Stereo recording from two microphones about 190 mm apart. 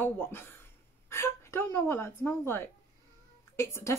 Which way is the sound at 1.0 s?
15° left (ahead or behind).